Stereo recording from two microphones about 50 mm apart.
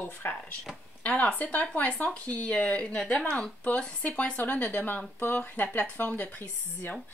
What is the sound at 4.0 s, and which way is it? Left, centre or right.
A woman's voice, left.